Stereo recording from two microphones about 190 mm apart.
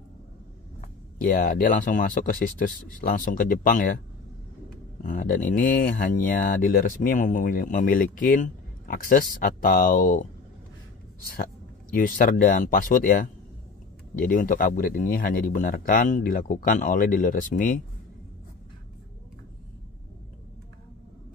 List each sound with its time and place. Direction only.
0.7 s speech: 45° left (ahead or behind)
5.0 s speech: 45° left (ahead or behind)
11.9 s speech: 45° left (ahead or behind)